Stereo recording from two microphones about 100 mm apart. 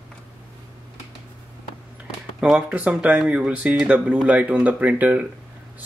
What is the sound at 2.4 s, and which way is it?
Speech, 10° right (ahead or behind).